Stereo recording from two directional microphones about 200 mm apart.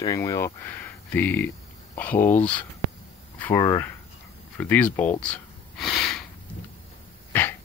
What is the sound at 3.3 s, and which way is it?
Speech, 10° left (ahead or behind).